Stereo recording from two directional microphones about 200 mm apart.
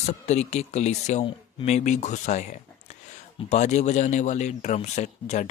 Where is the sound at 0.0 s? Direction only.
35° left (ahead or behind).